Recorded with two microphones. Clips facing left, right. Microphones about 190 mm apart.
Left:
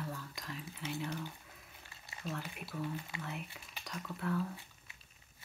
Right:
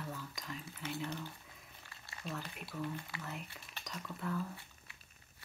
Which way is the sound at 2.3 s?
Centre (ahead or behind).